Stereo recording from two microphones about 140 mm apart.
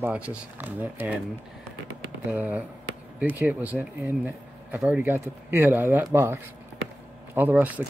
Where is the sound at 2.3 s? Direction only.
10° right (ahead or behind).